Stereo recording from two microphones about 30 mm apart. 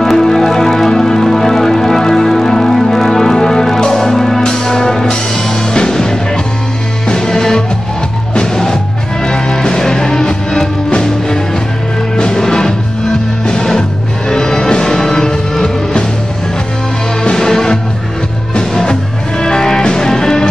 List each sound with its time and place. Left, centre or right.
0.1 s music: centre
9.2 s music: left
14.3 s music: centre
15.6 s music: left
17.2 s music: left